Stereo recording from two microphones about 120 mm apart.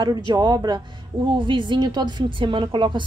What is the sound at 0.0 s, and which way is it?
A woman's voice, 35° right (ahead or behind).